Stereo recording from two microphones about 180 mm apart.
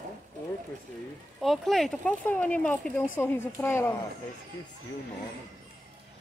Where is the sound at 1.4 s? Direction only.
Centre (ahead or behind).